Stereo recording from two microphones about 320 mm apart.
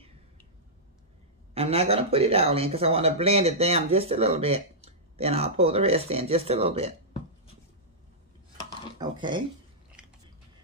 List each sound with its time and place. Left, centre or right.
1.5 s speech: centre
9.0 s speech: centre